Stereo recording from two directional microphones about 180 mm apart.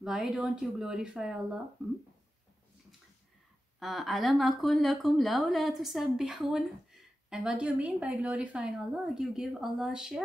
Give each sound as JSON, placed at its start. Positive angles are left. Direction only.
{"t": 0.0, "sound": "a woman's voice", "side_deg": -5}
{"t": 3.8, "sound": "a woman's voice", "side_deg": 0}